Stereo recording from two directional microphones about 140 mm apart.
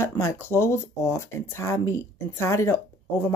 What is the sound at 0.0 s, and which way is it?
Speech, 20° left (ahead or behind).